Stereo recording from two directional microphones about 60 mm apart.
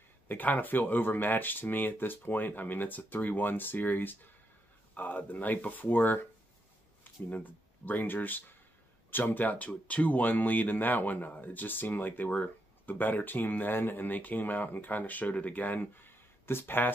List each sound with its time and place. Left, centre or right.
0.3 s speech: left
7.2 s speech: left